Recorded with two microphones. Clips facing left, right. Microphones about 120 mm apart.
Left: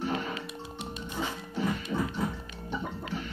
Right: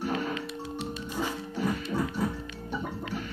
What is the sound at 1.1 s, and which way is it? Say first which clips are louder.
Music: right 1 dB; 10° right (ahead or behind).